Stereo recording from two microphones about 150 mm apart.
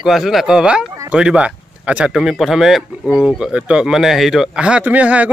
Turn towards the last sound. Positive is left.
turn(degrees=-10)  # may be behind; listen again after turning